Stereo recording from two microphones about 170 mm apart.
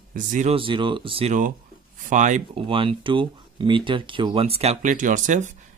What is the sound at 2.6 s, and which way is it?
Speech, 30° right (ahead or behind).